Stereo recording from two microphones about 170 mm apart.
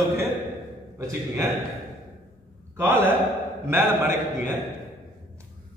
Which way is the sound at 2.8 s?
10° right (ahead or behind).